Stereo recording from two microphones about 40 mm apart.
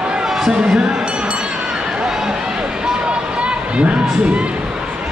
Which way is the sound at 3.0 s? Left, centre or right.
Right.